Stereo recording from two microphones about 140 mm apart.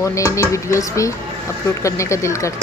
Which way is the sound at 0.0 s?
20° left (ahead or behind).